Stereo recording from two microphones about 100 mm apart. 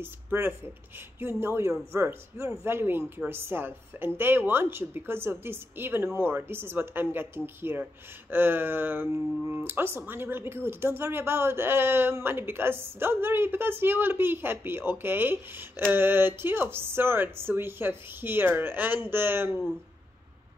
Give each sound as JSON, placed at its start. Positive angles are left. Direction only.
{"t": 0.0, "sound": "a woman's voice", "side_deg": -25}